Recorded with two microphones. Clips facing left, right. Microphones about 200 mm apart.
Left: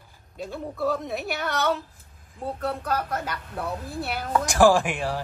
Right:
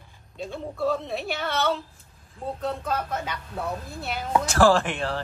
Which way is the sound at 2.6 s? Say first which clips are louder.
Left 1 dB; 5° left (ahead or behind).